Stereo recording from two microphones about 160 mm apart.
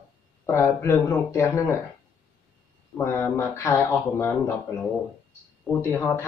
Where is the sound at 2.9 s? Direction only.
15° left (ahead or behind).